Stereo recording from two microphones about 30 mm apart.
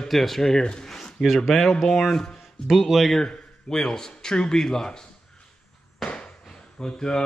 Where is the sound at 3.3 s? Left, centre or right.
Left.